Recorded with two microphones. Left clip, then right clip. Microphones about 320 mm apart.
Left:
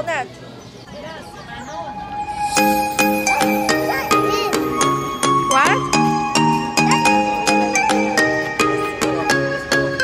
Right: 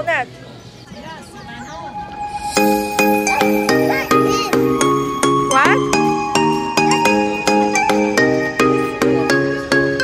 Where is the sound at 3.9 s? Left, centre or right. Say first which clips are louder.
Right 2 dB; right.